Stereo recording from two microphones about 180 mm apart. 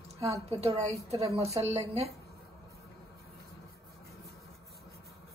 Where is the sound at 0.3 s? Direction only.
35° right (ahead or behind).